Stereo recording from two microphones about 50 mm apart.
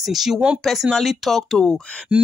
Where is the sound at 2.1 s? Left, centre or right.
Right.